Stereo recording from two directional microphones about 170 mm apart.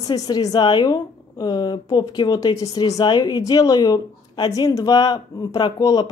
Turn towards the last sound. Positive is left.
turn(degrees=20)  # may be behind; listen again after turning